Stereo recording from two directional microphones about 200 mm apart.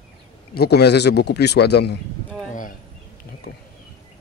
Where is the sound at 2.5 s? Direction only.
40° left (ahead or behind).